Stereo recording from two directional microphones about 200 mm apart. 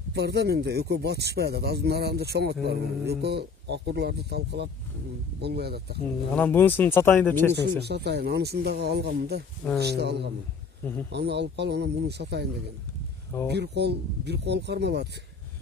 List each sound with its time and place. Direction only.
0.1 s speech: 55° right (ahead or behind)
6.3 s speech: 10° left (ahead or behind)
7.8 s speech: 55° right (ahead or behind)
13.5 s speech: 55° right (ahead or behind)